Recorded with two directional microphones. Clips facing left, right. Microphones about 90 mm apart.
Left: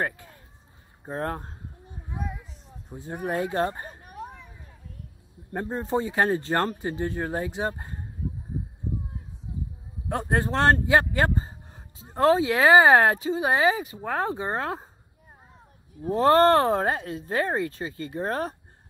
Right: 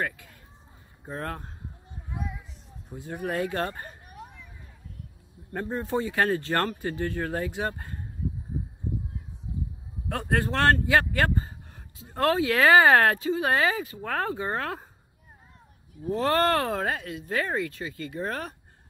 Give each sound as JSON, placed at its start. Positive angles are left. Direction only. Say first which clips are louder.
{"t": 0.0, "sound": "speech", "louder": "left 2 dB", "side_deg": 35}
{"t": 2.9, "sound": "speech", "louder": "left 2 dB", "side_deg": 30}
{"t": 3.9, "sound": "a sound", "louder": "left 6 dB", "side_deg": 40}
{"t": 5.5, "sound": "speech", "louder": "left 2 dB", "side_deg": 25}
{"t": 10.0, "sound": "speech", "louder": "left 1 dB", "side_deg": 25}
{"t": 16.1, "sound": "speech", "louder": "left 6 dB", "side_deg": 30}